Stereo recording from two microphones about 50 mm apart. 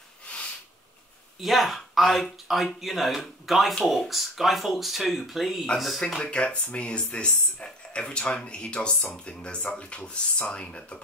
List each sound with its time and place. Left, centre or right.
1.4 s speech: centre
6.2 s speech: left